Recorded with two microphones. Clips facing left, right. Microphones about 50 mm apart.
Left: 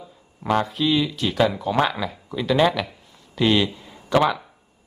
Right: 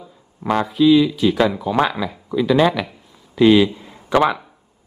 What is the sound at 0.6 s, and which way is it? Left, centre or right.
Speech, centre.